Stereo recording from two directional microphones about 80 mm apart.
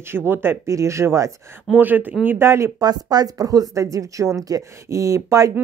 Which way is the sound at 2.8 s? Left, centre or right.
Right.